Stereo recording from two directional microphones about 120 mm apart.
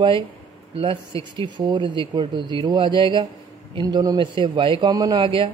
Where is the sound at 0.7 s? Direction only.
50° right (ahead or behind).